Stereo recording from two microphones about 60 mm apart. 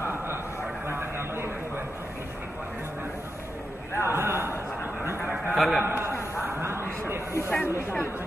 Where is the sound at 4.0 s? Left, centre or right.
Right.